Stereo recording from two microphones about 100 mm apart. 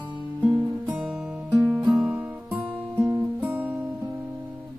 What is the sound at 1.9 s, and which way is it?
Music, 10° right (ahead or behind).